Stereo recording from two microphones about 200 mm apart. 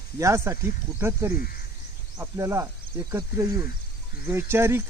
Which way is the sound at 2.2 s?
15° right (ahead or behind).